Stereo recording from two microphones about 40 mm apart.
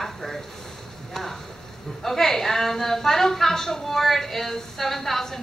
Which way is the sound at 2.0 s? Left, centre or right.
Centre.